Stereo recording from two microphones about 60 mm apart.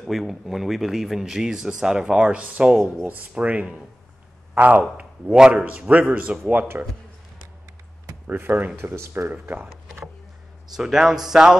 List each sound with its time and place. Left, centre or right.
0.0 s speech: centre
3.1 s speech: right
8.3 s speech: right
8.7 s speech: right
9.3 s speech: right
10.8 s speech: centre